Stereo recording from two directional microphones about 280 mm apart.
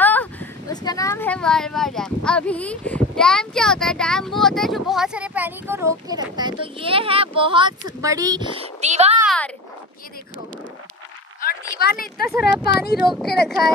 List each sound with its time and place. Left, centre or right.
0.0 s speech: centre; by 9.2 s right
9.2 s speech: centre
11.8 s speech: left
12.3 s speech: centre